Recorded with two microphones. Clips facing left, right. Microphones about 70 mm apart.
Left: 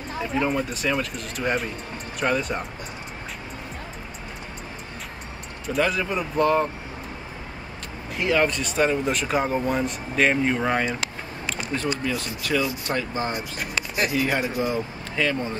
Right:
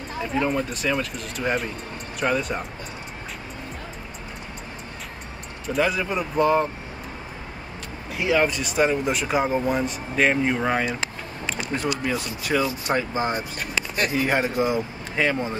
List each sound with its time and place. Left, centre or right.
0.2 s speech: centre
5.7 s speech: centre
8.2 s speech: centre
11.5 s a sound: centre
12.1 s speech: centre
13.6 s speech: centre
14.1 s speech: right